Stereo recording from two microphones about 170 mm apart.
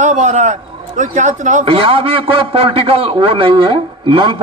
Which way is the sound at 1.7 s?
30° right (ahead or behind).